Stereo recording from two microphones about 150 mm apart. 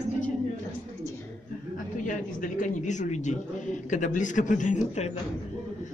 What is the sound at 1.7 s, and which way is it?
Speech, 60° left (ahead or behind).